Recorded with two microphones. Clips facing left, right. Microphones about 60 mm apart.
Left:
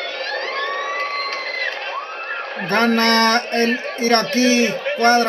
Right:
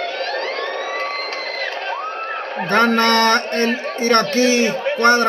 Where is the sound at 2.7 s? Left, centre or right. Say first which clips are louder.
Right 1 dB; centre.